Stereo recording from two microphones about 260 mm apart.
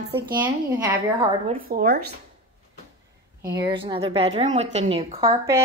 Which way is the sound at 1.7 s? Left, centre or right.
Right.